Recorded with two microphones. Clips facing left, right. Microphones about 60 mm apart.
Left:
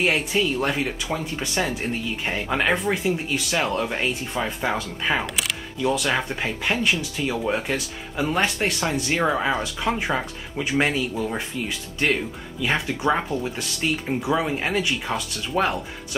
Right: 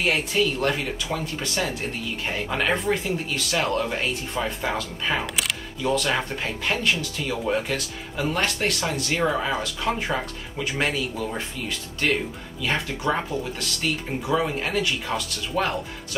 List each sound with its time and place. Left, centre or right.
0.0 s speech: centre
5.2 s speech: centre
12.6 s speech: centre